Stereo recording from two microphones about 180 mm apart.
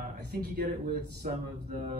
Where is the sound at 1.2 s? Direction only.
50° right (ahead or behind).